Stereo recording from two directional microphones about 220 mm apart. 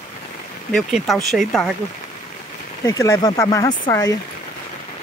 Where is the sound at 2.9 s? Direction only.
15° left (ahead or behind).